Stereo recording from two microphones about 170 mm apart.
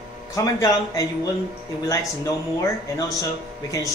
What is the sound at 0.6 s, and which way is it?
Speech, 20° left (ahead or behind).